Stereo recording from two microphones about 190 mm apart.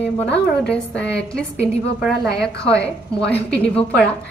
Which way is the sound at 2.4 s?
20° right (ahead or behind).